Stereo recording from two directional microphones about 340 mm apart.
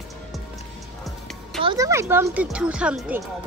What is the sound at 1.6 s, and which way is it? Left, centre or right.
Speech, centre.